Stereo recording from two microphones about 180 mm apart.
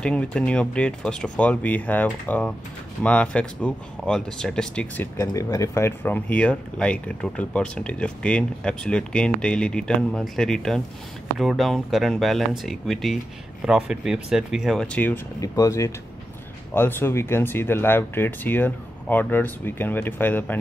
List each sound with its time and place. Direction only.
0.0 s speech: 5° left (ahead or behind)
5.1 s speech: 15° left (ahead or behind)
15.4 s speech: 20° left (ahead or behind)